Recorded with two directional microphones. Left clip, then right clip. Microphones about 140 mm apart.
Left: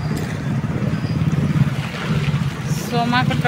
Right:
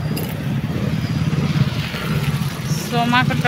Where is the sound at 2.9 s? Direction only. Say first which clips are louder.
Right 2 dB; 15° right (ahead or behind).